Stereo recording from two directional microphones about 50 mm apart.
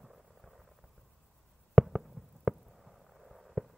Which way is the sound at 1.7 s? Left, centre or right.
Centre.